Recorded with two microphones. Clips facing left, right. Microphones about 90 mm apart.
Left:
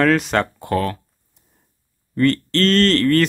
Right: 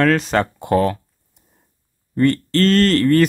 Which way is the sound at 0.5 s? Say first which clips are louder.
Right 4 dB; 20° right (ahead or behind).